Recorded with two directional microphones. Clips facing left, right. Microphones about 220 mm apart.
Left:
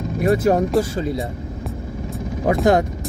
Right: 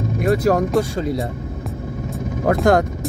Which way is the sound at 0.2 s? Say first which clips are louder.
Even; centre (ahead or behind).